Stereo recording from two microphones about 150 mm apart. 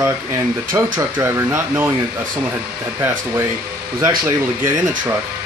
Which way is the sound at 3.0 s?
15° right (ahead or behind).